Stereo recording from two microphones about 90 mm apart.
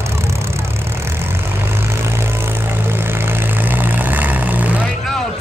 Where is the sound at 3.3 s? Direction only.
25° right (ahead or behind).